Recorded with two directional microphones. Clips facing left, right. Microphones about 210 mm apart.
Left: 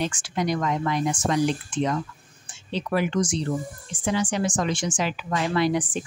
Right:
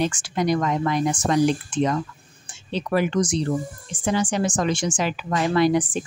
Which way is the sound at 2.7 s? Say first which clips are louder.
Right 2 dB; 40° right (ahead or behind).